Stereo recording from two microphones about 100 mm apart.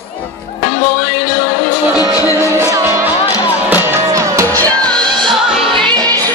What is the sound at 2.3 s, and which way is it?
Music, 25° right (ahead or behind).